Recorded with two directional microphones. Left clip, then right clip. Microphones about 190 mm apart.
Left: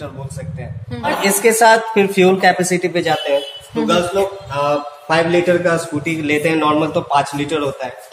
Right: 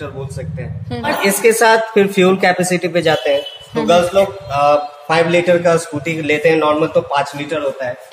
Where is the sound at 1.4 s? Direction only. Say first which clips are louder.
Even; 20° right (ahead or behind).